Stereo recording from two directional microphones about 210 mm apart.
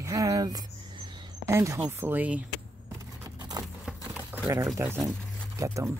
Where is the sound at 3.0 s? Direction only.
20° right (ahead or behind).